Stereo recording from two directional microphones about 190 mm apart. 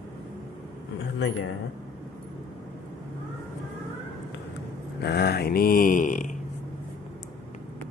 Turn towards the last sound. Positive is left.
turn(degrees=40)  # may be behind; listen again after turning